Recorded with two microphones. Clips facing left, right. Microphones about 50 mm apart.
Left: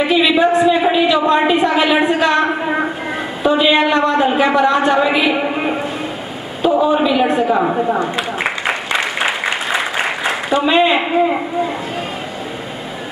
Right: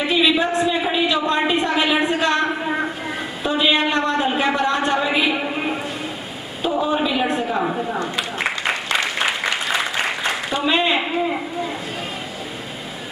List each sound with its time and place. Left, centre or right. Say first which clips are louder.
0.0 s a sound: left 5 dB; centre
3.4 s a woman's voice: left 6 dB; centre
5.4 s a sound: left 5 dB; centre
6.8 s a man's voice: left 5 dB; centre
7.4 s a woman's voice: left 7 dB; centre
8.5 s applause: left 3 dB; centre